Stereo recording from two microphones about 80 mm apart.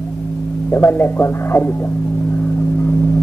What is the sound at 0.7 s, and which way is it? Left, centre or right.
A man's voice, left.